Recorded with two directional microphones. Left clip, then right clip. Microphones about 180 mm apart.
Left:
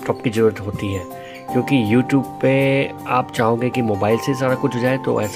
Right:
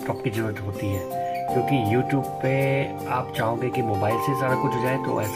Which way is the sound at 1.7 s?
55° left (ahead or behind).